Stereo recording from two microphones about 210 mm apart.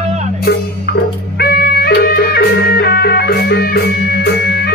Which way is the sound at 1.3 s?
50° left (ahead or behind).